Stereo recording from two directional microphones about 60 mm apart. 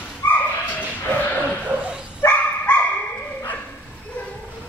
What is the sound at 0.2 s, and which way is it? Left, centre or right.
Dog, left.